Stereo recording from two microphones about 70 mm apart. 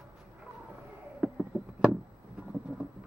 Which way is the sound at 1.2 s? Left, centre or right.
Centre.